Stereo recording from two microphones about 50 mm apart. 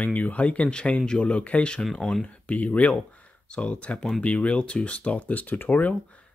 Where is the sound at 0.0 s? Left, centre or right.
Left.